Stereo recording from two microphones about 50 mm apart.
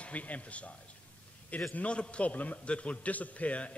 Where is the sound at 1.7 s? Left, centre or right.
Left.